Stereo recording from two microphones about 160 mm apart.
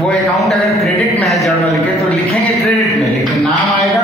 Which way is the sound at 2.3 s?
40° left (ahead or behind).